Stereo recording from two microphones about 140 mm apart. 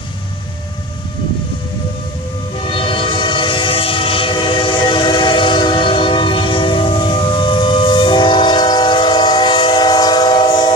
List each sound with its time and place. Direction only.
2.6 s train: 40° left (ahead or behind)